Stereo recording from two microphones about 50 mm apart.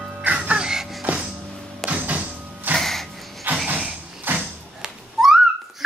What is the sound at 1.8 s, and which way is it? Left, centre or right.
Printer, right.